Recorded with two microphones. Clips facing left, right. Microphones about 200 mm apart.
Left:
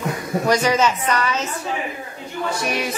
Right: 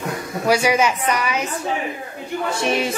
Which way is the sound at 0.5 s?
10° right (ahead or behind).